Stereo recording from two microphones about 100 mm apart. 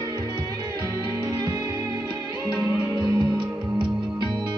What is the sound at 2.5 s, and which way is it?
Music, 40° right (ahead or behind).